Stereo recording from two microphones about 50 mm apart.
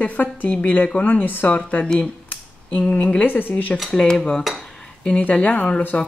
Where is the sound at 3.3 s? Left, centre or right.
Left.